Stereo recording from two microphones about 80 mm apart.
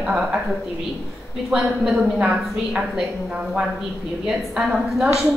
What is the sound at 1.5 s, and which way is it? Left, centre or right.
A woman's voice, centre.